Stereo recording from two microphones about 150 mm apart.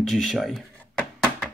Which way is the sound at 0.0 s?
Centre (ahead or behind).